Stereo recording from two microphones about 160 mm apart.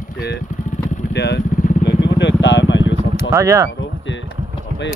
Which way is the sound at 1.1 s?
90° left.